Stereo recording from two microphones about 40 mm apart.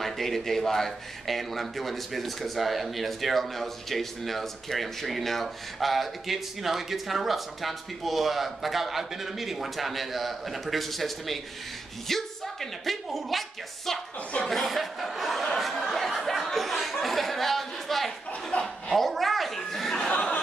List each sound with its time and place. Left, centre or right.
0.0 s a woman's voice: centre
15.4 s a sound: centre
18.5 s chuckle: left
18.9 s chuckle: centre